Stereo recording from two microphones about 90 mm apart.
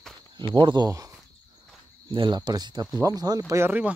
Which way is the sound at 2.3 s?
50° right (ahead or behind).